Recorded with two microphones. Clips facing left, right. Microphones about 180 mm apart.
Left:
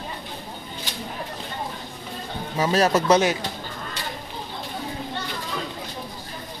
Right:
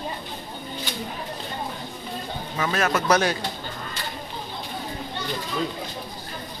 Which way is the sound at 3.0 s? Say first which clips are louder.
Even; 20° left (ahead or behind).